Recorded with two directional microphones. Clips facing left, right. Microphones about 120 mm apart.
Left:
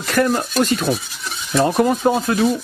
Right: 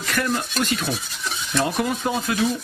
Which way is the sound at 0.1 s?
40° left (ahead or behind).